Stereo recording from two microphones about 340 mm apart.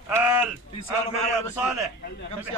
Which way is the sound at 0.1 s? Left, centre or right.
Centre.